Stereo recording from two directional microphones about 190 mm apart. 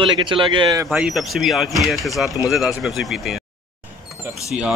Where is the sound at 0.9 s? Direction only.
5° right (ahead or behind).